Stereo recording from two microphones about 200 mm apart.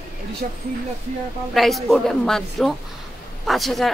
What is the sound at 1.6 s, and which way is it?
Speech, centre (ahead or behind).